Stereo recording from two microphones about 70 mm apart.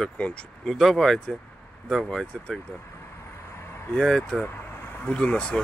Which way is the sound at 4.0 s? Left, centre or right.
Centre.